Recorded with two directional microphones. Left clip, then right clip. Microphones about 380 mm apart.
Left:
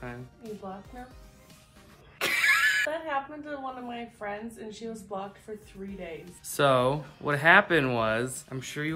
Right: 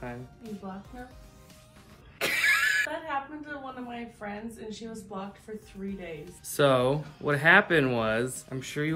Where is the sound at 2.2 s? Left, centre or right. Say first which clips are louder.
Left 1 dB; centre.